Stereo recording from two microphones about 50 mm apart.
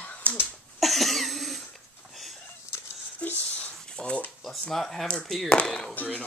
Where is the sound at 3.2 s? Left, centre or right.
Left.